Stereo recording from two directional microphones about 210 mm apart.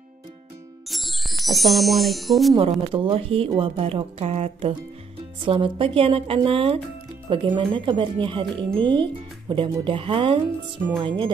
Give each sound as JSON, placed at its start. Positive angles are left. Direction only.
{"t": 0.8, "sound": "speech", "side_deg": 0}
{"t": 2.5, "sound": "speech", "side_deg": -25}